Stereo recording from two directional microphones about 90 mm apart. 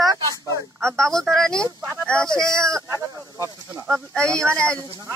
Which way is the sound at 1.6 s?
30° right (ahead or behind).